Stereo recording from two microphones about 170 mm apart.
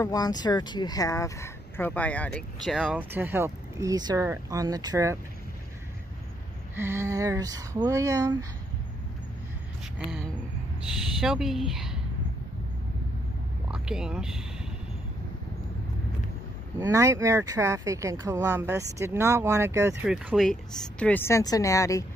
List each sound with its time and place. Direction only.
0.0 s speech: 25° left (ahead or behind); by 5.2 s 20° right (ahead or behind)
6.7 s speech: 15° right (ahead or behind)
11.1 s a woman's voice: centre (ahead or behind)
13.7 s speech: 5° right (ahead or behind)
16.7 s speech: 20° right (ahead or behind)
20.1 s speech: centre (ahead or behind); by 22.0 s 20° left (ahead or behind)